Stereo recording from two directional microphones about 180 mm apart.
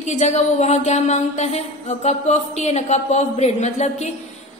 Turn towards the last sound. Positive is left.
turn(degrees=40)  # may be behind; listen again after turning